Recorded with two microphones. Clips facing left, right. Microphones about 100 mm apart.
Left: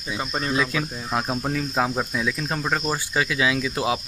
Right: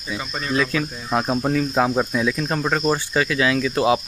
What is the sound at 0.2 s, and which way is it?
Speech, 40° left (ahead or behind).